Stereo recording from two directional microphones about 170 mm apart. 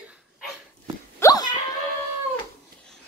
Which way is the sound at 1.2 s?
20° left (ahead or behind).